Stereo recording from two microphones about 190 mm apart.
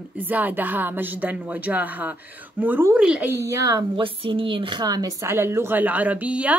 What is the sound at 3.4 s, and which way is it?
A woman's voice, 15° right (ahead or behind).